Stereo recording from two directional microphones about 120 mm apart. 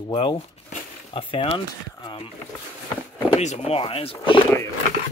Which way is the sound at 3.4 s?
75° left (ahead or behind).